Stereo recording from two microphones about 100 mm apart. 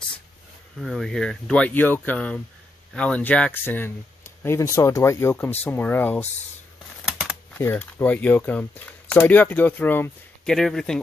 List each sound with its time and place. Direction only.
0.7 s speech: centre (ahead or behind); by 6.2 s 20° left (ahead or behind)
7.1 s typing: 10° right (ahead or behind)
7.7 s speech: 15° left (ahead or behind)
10.4 s speech: 5° left (ahead or behind)